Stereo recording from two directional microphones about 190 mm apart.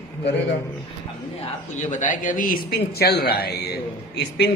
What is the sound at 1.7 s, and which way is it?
Speech, 40° left (ahead or behind).